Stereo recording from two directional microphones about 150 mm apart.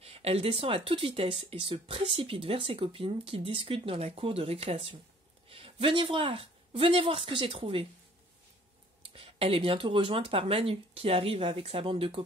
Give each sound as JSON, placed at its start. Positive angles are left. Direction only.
{"t": 0.0, "sound": "speech", "side_deg": -40}
{"t": 9.0, "sound": "speech", "side_deg": -40}